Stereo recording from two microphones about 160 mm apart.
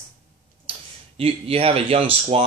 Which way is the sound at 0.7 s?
35° right (ahead or behind).